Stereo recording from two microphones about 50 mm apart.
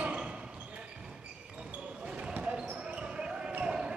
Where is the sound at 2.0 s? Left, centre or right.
Right.